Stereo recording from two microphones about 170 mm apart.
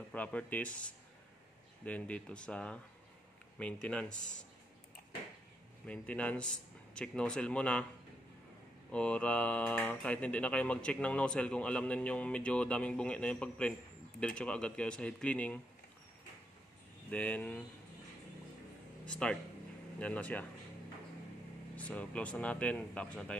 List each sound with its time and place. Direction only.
0.1 s speech: 10° left (ahead or behind)
5.9 s speech: 10° left (ahead or behind)
8.9 s speech: 5° left (ahead or behind)
17.1 s speech: 10° left (ahead or behind)
19.2 s speech: 5° left (ahead or behind)
21.7 s speech: 5° left (ahead or behind)